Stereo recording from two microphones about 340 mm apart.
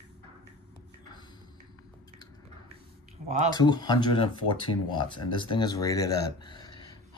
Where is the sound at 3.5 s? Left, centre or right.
Centre.